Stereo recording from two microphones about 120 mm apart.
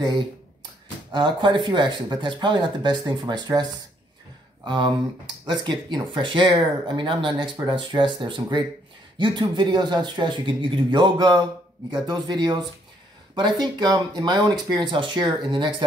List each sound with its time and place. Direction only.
1.1 s speech: 40° right (ahead or behind)
4.6 s speech: 40° right (ahead or behind)